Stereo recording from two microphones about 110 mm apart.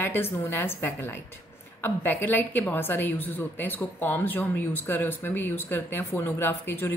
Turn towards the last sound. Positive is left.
turn(degrees=20)  # may be behind; listen again after turning